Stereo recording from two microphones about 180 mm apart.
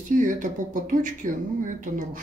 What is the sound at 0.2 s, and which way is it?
Speech, 45° right (ahead or behind).